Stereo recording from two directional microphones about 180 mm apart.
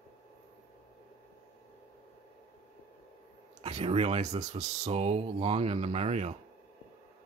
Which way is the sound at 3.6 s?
35° right (ahead or behind).